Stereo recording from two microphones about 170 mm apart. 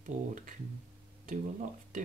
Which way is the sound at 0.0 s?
50° right (ahead or behind).